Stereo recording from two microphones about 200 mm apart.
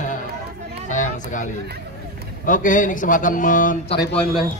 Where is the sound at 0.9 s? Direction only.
40° left (ahead or behind).